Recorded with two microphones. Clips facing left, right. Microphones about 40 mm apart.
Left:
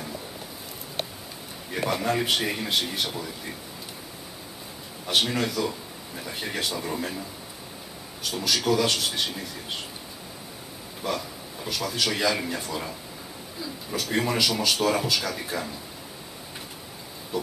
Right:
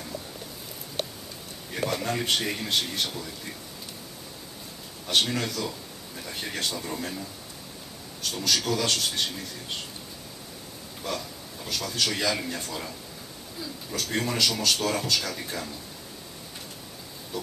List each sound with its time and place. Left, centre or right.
1.7 s speech: centre
5.0 s speech: centre
11.0 s speech: centre